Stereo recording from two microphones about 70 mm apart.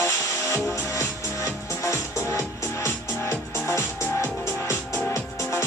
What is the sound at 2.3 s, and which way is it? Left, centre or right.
Music, left.